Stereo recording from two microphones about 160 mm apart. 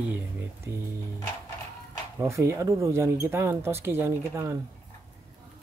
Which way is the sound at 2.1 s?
15° right (ahead or behind).